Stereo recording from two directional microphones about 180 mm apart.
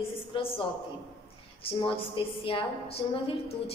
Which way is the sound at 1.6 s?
30° left (ahead or behind).